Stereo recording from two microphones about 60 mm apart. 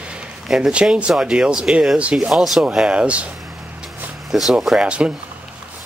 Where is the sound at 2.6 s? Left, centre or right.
Centre.